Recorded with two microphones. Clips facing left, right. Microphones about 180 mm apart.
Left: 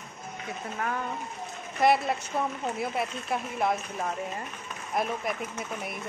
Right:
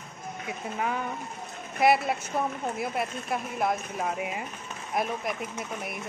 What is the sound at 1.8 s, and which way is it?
Speech, 5° right (ahead or behind).